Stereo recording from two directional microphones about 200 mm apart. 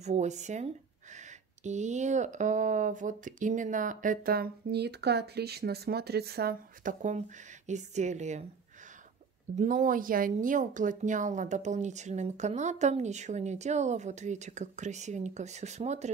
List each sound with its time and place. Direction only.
0.0 s speech: 35° right (ahead or behind)
9.6 s speech: 40° right (ahead or behind)